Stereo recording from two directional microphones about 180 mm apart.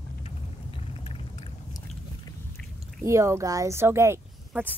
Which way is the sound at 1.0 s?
30° left (ahead or behind).